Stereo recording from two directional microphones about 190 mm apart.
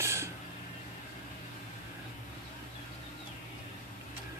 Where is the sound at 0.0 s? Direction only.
15° right (ahead or behind).